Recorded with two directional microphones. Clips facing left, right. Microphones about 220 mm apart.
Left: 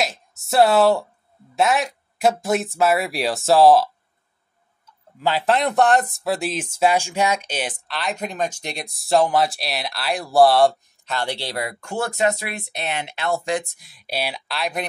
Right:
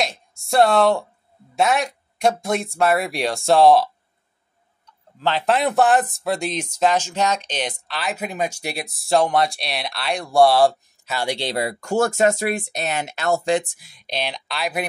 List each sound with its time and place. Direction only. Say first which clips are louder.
0.0 s a sound: even; 5° left (ahead or behind)
1.5 s speech: even; centre (ahead or behind); by 11.7 s 25° right (ahead or behind)
11.8 s speech: right 4 dB; 45° right (ahead or behind)
13.7 s speech: even; centre (ahead or behind)